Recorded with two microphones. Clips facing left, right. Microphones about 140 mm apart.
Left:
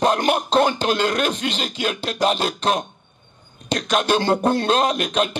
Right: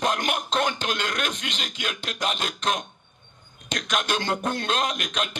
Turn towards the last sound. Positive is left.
turn(degrees=35)  # may be behind; listen again after turning